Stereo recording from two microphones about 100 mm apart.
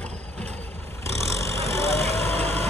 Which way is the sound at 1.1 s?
30° left (ahead or behind).